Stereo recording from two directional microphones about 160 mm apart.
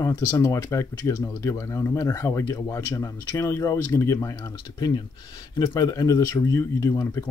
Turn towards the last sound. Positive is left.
turn(degrees=20)  # may be behind; listen again after turning